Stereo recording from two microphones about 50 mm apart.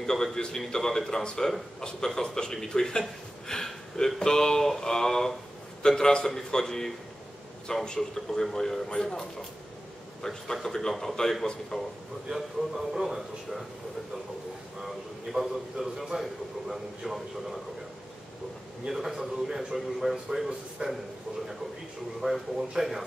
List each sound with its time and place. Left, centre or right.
0.0 s a man's voice: centre
10.2 s a man's voice: centre
12.3 s a man's voice: centre
15.3 s a man's voice: centre
18.9 s a man's voice: centre
20.8 s a man's voice: centre
22.2 s a man's voice: centre